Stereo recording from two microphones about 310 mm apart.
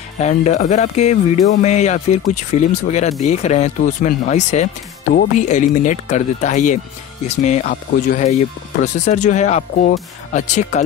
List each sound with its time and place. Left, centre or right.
0.2 s speech: left